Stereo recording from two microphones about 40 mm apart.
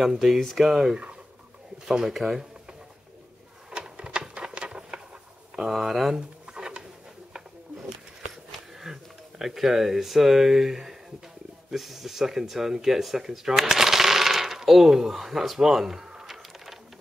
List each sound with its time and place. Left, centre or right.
0.4 s speech: centre
0.7 s speech: centre
3.7 s a sound: right
5.7 s speech: centre
6.1 s pigeon: centre
8.5 s speech: centre